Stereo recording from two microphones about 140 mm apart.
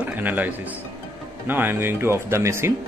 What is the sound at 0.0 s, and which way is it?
Music, 15° right (ahead or behind).